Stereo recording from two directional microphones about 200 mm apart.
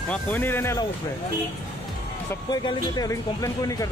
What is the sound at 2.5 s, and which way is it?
Speech, 20° left (ahead or behind).